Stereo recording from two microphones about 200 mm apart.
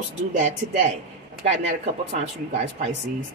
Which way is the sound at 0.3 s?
35° right (ahead or behind).